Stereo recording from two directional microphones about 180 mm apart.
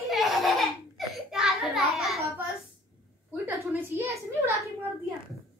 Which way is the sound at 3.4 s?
15° right (ahead or behind).